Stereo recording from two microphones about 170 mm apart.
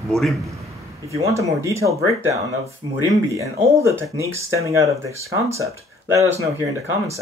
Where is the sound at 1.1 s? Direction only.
20° right (ahead or behind).